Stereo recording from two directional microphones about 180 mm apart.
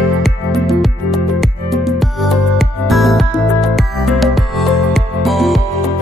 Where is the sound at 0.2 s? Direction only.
Centre (ahead or behind).